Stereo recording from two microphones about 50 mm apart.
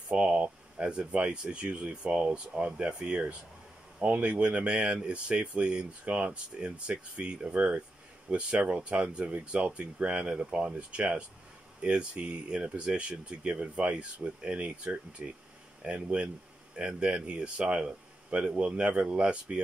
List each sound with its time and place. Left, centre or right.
0.1 s speech: right